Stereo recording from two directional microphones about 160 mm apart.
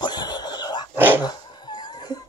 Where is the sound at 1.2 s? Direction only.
25° left (ahead or behind).